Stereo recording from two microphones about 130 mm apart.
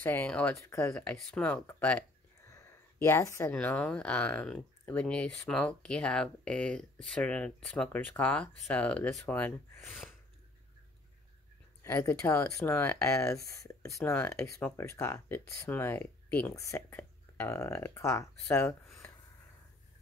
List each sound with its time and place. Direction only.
0.0 s speech: 10° left (ahead or behind)
0.6 s speech: 25° left (ahead or behind)
0.9 s speech: 5° left (ahead or behind)
2.5 s a sound: 20° left (ahead or behind)
3.5 s speech: 10° left (ahead or behind)
11.8 s speech: 20° left (ahead or behind)